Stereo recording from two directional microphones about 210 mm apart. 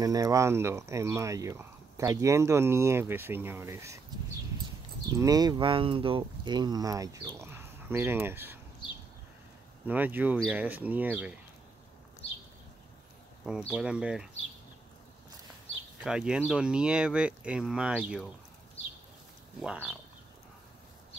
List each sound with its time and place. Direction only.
0.0 s speech: 15° right (ahead or behind)
5.1 s speech: 15° right (ahead or behind)
9.8 s speech: 10° right (ahead or behind)
13.5 s speech: centre (ahead or behind)
16.0 s speech: 5° right (ahead or behind)
19.6 s speech: 5° right (ahead or behind)